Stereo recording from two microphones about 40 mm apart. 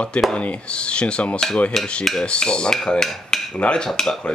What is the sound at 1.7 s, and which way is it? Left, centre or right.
Speech, centre.